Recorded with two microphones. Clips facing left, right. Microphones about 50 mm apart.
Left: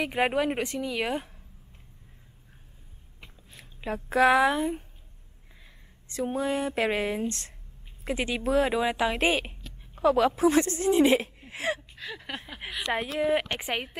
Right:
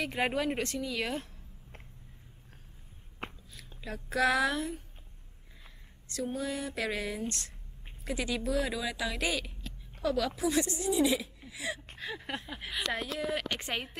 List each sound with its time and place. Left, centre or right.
0.0 s speech: left
3.2 s biting: right
3.5 s speech: left
6.2 s speech: left
12.0 s a sound: centre
12.8 s speech: left
13.6 s speech: centre